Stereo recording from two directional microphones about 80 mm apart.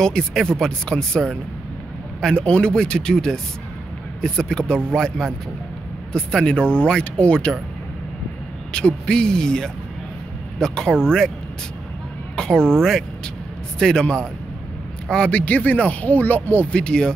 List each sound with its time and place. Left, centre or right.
0.0 s speech: centre
8.7 s speech: centre
12.4 s speech: centre